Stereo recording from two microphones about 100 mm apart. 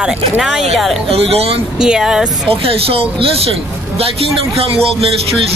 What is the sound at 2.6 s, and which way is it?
Speech, 70° right (ahead or behind).